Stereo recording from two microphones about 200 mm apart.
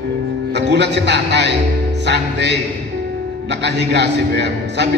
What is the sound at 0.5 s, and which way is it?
A man's voice, 60° right (ahead or behind).